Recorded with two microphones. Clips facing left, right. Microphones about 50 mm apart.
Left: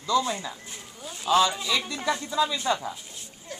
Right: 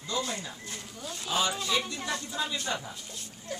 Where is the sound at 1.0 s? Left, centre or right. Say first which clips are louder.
Left 1 dB; centre.